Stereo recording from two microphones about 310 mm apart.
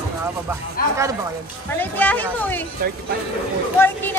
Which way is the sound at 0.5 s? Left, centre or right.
Centre.